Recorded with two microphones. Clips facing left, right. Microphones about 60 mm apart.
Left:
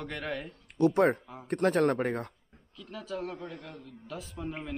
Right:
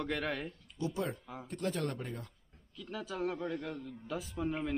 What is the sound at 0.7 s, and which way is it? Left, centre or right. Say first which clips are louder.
Speech: left 13 dB; left.